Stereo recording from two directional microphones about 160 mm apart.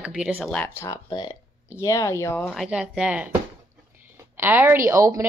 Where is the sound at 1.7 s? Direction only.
20° left (ahead or behind).